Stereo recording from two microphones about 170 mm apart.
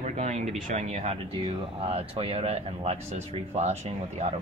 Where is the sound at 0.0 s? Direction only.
40° right (ahead or behind).